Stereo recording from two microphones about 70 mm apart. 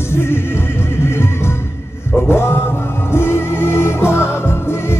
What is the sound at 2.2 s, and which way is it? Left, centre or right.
Music, left.